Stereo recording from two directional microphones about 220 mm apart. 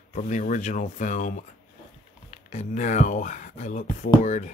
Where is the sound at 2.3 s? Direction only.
35° left (ahead or behind).